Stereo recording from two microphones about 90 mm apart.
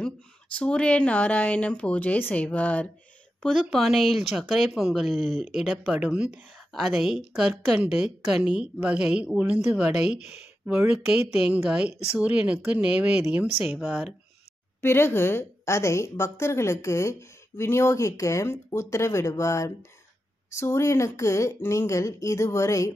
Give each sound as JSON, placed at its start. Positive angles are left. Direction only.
{"t": 0.6, "sound": "speech", "side_deg": 10}
{"t": 3.4, "sound": "speech", "side_deg": 0}
{"t": 5.7, "sound": "a woman's voice", "side_deg": -15}
{"t": 6.7, "sound": "a woman's voice", "side_deg": 0}
{"t": 14.8, "sound": "a woman's voice", "side_deg": 25}